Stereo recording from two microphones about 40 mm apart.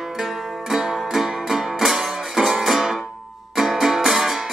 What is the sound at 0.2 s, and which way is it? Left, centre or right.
Music, centre.